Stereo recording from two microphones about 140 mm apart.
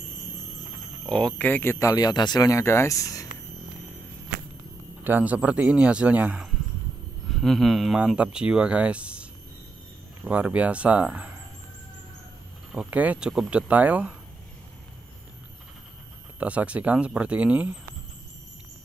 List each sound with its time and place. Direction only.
1.0 s speech: 5° left (ahead or behind); by 3.3 s 25° left (ahead or behind)
5.0 s speech: 10° right (ahead or behind)
12.7 s speech: 10° right (ahead or behind)
16.3 s speech: 10° right (ahead or behind)